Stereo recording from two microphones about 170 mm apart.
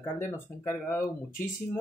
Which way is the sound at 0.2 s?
15° left (ahead or behind).